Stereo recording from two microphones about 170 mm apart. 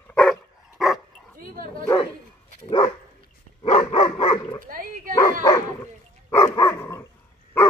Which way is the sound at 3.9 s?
30° left (ahead or behind).